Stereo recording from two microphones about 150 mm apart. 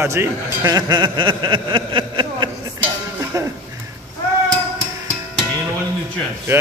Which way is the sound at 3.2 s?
20° right (ahead or behind).